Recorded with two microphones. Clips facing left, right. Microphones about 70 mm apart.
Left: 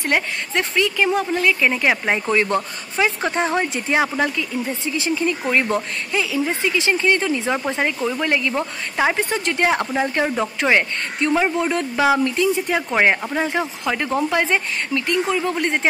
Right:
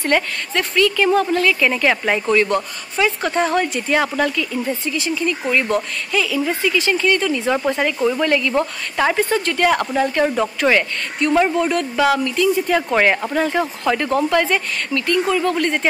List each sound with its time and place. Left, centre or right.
0.1 s a woman's voice: centre; by 5.8 s left
6.1 s a woman's voice: left